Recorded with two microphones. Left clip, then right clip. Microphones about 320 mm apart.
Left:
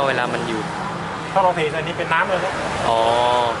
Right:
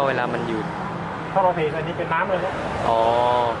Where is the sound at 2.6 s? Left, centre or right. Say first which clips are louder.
Left 1 dB; right.